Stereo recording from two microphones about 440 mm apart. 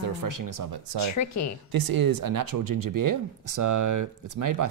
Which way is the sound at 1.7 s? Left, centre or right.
Right.